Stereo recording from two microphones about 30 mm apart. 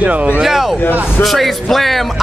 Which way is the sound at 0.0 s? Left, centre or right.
Right.